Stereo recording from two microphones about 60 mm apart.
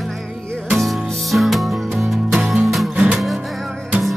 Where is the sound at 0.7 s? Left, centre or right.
Centre.